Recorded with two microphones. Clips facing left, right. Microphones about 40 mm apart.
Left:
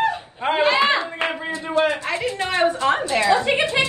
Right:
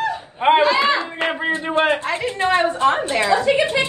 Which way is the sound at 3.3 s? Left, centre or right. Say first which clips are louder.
Right 2 dB; left.